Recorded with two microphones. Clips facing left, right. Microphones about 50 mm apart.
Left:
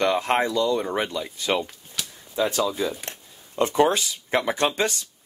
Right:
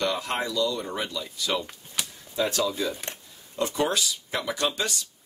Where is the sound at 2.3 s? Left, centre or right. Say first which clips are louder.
Left 3 dB; centre.